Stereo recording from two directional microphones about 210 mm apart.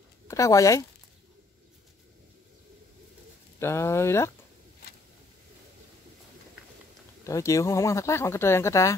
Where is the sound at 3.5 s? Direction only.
10° left (ahead or behind).